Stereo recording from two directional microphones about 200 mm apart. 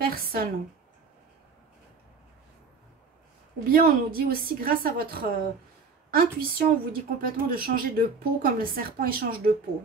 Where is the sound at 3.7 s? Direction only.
45° right (ahead or behind).